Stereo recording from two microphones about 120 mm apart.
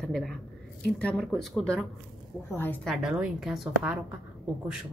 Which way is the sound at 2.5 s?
15° left (ahead or behind).